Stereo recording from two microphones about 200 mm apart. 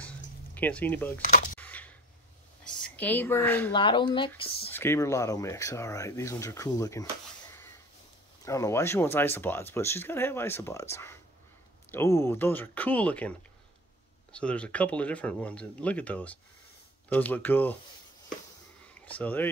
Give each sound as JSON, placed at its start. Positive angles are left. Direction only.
{"t": 0.6, "sound": "speech", "side_deg": 5}
{"t": 1.2, "sound": "camera", "side_deg": 45}
{"t": 1.6, "sound": "a sound", "side_deg": 5}
{"t": 2.6, "sound": "speech", "side_deg": 10}
{"t": 3.7, "sound": "speech", "side_deg": 25}
{"t": 4.7, "sound": "speech", "side_deg": 15}
{"t": 8.5, "sound": "speech", "side_deg": 15}
{"t": 18.9, "sound": "speech", "side_deg": 10}